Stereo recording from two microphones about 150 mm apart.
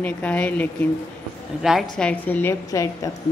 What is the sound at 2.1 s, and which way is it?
A woman's voice, 10° left (ahead or behind).